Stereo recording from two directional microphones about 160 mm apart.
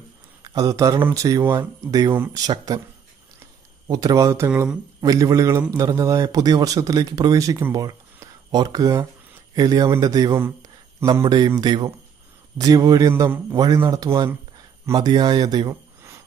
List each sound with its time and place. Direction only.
0.4 s speech: 20° right (ahead or behind)
3.8 s speech: 20° right (ahead or behind)